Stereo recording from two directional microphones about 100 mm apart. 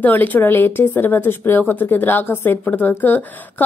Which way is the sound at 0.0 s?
15° left (ahead or behind).